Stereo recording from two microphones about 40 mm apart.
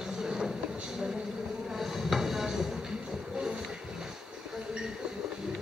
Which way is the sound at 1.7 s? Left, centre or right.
Centre.